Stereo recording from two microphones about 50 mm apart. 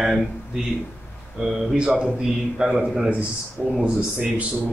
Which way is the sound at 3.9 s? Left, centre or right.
Right.